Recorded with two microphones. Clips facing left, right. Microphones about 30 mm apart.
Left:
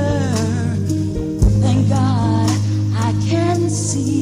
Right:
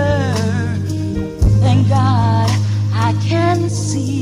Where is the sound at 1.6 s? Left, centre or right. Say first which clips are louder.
Right 3 dB; right.